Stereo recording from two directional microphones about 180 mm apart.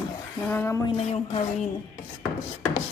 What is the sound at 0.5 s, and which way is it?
Speech, 15° left (ahead or behind).